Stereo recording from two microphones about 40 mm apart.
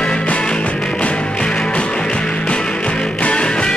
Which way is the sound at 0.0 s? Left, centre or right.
Left.